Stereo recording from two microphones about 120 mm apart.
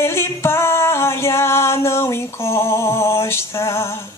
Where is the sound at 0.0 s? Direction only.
20° left (ahead or behind).